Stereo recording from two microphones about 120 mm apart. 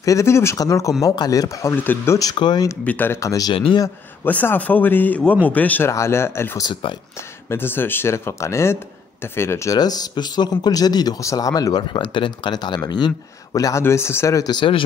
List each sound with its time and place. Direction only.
0.0 s a man's voice: 25° left (ahead or behind)
2.8 s a man's voice: 15° left (ahead or behind)
3.2 s speech: 30° left (ahead or behind)
3.5 s speech: 50° left (ahead or behind)
4.2 s a man's voice: 15° left (ahead or behind)
9.8 s a man's voice: 35° left (ahead or behind)